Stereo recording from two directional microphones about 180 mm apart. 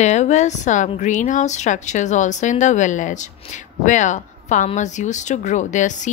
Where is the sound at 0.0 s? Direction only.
40° left (ahead or behind).